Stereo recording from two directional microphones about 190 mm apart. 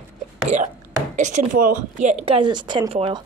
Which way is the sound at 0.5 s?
40° right (ahead or behind).